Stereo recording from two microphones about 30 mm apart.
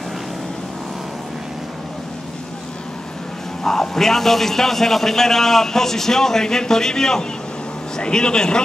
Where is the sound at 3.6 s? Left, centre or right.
Centre.